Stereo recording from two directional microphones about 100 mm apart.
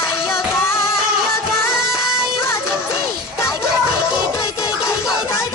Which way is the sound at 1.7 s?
5° right (ahead or behind).